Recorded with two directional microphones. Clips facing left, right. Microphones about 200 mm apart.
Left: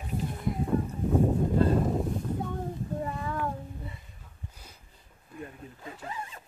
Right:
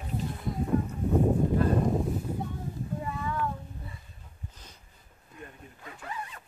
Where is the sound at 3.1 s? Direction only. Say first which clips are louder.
Even; 40° left (ahead or behind).